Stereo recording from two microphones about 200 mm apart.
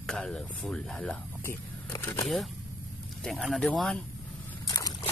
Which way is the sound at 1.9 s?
15° left (ahead or behind).